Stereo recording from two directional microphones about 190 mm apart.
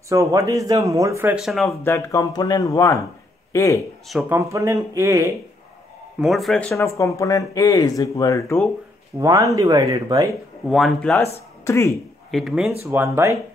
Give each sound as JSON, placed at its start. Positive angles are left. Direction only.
{"t": 0.1, "sound": "speech", "side_deg": -15}
{"t": 1.7, "sound": "speech", "side_deg": 15}
{"t": 4.3, "sound": "speech", "side_deg": -15}
{"t": 6.2, "sound": "speech", "side_deg": 0}
{"t": 6.7, "sound": "speech", "side_deg": 15}
{"t": 9.2, "sound": "speech", "side_deg": -15}
{"t": 10.7, "sound": "speech", "side_deg": 0}
{"t": 11.6, "sound": "speech", "side_deg": 15}
{"t": 12.3, "sound": "speech", "side_deg": 0}
{"t": 12.8, "sound": "speech", "side_deg": -10}